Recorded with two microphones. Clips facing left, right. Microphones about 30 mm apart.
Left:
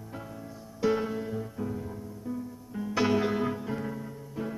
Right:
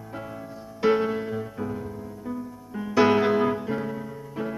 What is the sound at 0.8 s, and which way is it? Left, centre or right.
Music, right.